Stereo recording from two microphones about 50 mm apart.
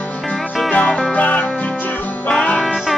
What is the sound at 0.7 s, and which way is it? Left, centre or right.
Music, left.